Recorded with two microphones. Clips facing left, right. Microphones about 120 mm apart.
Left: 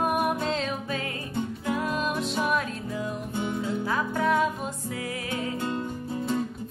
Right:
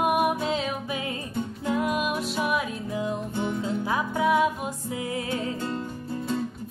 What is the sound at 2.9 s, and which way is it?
Music, 20° right (ahead or behind).